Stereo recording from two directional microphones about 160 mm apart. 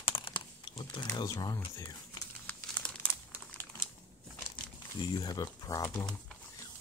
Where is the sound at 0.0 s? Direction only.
35° left (ahead or behind).